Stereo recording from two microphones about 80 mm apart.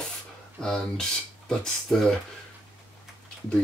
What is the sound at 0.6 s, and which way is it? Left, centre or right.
Speech, centre.